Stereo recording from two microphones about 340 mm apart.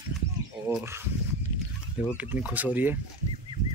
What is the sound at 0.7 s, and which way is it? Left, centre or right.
Speech, centre.